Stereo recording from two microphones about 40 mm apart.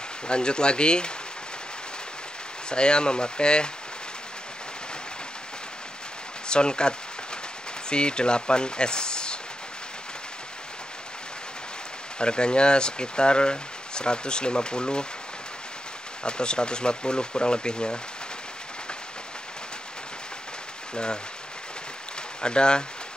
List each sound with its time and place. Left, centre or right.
0.3 s speech: left
2.7 s speech: left
6.5 s speech: left
12.2 s speech: left
16.3 s speech: left
20.9 s speech: left
22.4 s speech: left